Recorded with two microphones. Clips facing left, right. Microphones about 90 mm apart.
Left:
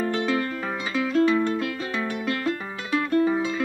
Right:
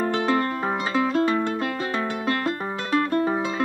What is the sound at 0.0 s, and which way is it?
Music, 40° right (ahead or behind).